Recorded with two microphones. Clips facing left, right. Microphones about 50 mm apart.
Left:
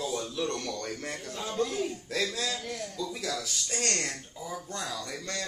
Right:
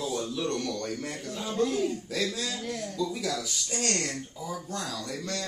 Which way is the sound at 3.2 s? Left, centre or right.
Centre.